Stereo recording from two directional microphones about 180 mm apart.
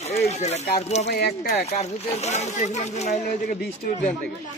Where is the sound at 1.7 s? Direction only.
35° left (ahead or behind).